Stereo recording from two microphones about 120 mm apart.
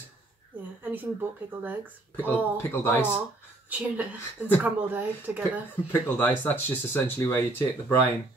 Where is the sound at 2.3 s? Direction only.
20° left (ahead or behind).